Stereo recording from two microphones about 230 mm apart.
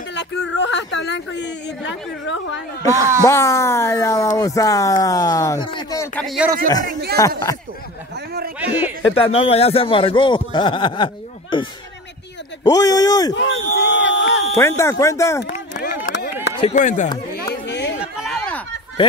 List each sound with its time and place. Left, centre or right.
0.1 s a woman's voice: left
2.9 s speech: centre
3.3 s speech: centre
6.2 s speech: centre
7.2 s speech: centre
8.5 s a sound: centre
9.1 s speech: left
12.6 s speech: centre
13.3 s a woman's voice: left
14.6 s speech: centre
15.7 s a sound: left
16.5 s speech: left
17.3 s a sound: left
18.0 s a sound: centre